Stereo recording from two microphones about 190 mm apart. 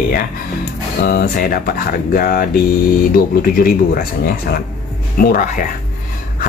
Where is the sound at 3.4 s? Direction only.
50° left (ahead or behind).